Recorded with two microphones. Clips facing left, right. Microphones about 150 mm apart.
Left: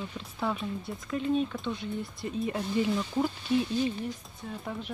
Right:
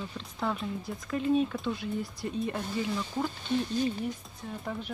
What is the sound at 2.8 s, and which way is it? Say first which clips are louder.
Speech: left 3 dB; 15° left (ahead or behind).